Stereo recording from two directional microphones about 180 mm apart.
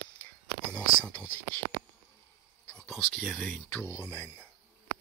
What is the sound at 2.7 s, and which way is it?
Speech, 5° left (ahead or behind).